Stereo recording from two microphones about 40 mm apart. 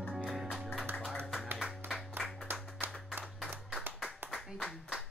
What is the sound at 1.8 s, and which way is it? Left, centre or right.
Music, right.